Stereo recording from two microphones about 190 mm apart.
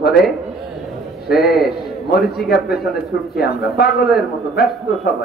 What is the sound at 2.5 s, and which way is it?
Speech, 55° left (ahead or behind).